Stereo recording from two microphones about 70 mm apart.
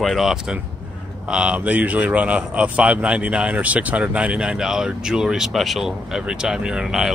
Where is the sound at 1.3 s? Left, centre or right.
Centre.